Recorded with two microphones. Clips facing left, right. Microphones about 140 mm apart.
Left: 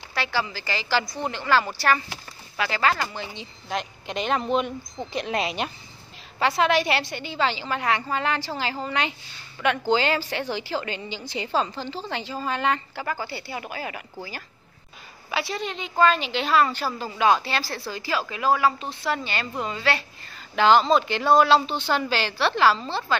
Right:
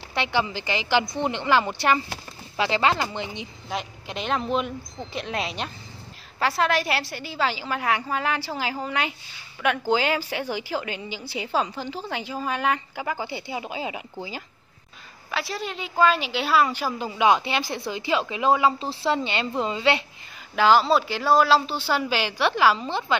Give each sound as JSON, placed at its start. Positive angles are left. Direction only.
{"t": 0.1, "sound": "a woman's voice", "side_deg": -20}
{"t": 3.6, "sound": "a woman's voice", "side_deg": 0}
{"t": 15.3, "sound": "a woman's voice", "side_deg": 0}
{"t": 20.5, "sound": "a woman's voice", "side_deg": -5}